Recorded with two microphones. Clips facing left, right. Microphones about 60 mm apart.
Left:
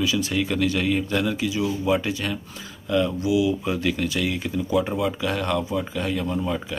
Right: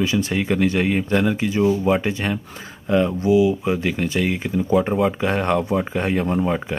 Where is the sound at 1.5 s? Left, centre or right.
Right.